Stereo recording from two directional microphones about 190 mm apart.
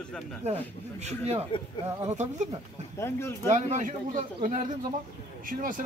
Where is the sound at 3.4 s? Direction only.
40° right (ahead or behind).